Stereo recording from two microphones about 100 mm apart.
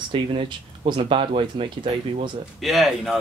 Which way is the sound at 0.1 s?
60° right (ahead or behind).